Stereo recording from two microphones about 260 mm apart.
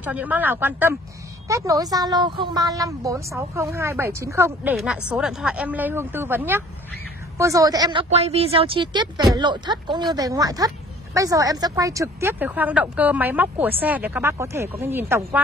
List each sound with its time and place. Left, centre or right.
0.0 s a woman's voice: centre